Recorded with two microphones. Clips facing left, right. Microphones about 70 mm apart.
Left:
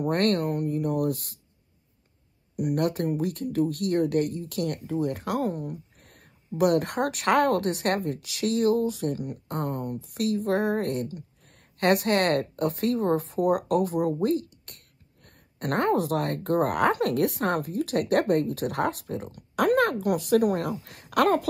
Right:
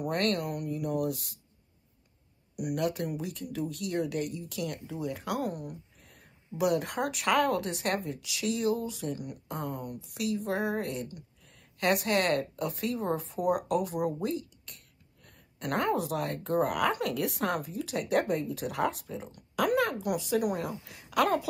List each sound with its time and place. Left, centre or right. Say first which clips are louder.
0.1 s speech: left 5 dB; left
2.5 s speech: left 5 dB; left
5.5 s speech: left 6 dB; left
5.9 s speech: left 2 dB; left
9.5 s speech: left 5 dB; left
9.8 s speech: left 5 dB; left